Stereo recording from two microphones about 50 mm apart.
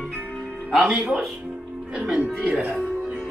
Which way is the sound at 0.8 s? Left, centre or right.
Centre.